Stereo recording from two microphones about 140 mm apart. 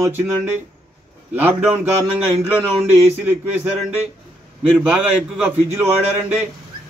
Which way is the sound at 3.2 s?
15° right (ahead or behind).